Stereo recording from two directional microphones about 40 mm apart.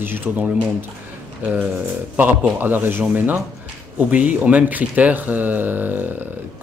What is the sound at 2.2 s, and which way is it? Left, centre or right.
Speech, right.